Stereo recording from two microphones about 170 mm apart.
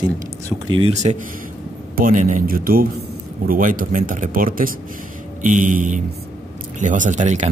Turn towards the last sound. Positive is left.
turn(degrees=-45)  # may be behind; listen again after turning